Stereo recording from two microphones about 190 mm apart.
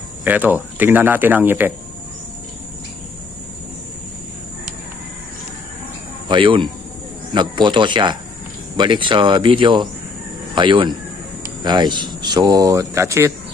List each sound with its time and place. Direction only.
0.2 s speech: 10° right (ahead or behind)
6.2 s speech: 25° right (ahead or behind)